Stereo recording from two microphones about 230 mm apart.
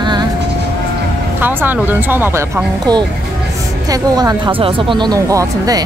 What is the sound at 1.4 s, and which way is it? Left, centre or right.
Speech, centre.